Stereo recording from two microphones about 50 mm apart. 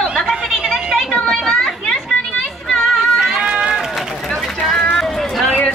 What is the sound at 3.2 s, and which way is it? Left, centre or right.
Run, centre.